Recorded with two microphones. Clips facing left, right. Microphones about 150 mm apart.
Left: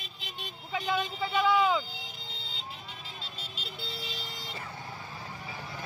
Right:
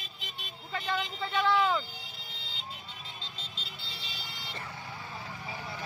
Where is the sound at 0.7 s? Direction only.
10° left (ahead or behind).